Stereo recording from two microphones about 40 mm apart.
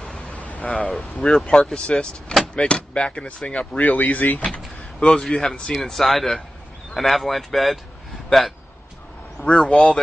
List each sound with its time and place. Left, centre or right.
0.3 s a sound: left
0.8 s speech: centre
1.5 s speech: centre
3.8 s speech: left
5.0 s a man's voice: centre
9.5 s speech: left